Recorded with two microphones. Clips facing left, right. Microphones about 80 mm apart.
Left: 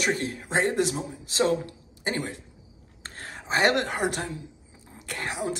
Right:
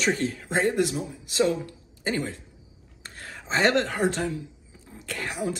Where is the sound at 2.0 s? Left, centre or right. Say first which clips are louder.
Right 2 dB; left.